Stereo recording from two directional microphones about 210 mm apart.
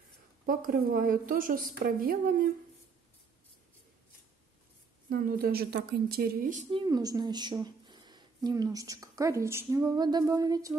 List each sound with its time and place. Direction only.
0.5 s a woman's voice: 40° right (ahead or behind)
5.1 s speech: 45° right (ahead or behind)
6.7 s a woman's voice: 20° right (ahead or behind)